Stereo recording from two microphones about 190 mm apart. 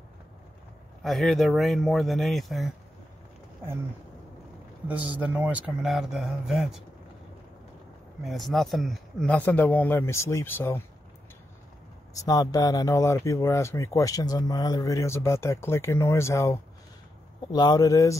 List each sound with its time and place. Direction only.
1.0 s speech: centre (ahead or behind)
4.8 s speech: 5° right (ahead or behind)
8.2 s speech: centre (ahead or behind)
12.1 s speech: 20° left (ahead or behind)